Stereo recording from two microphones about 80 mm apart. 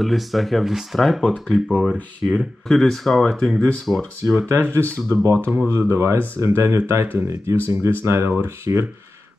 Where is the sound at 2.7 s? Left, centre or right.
Centre.